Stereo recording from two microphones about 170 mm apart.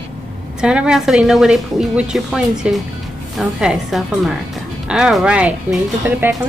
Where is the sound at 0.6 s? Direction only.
5° right (ahead or behind).